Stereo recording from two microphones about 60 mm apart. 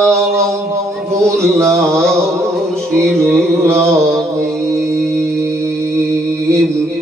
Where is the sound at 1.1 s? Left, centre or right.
Right.